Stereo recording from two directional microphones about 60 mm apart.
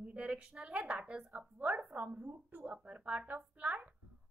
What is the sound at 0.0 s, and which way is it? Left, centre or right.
A woman's voice, centre.